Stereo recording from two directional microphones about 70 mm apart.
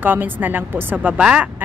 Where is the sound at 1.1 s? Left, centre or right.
Centre.